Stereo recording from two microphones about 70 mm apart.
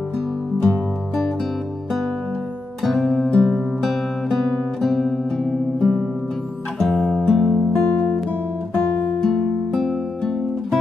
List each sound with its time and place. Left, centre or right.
2.8 s guitar: centre
3.3 s music: centre
7.7 s guitar: left
9.2 s music: centre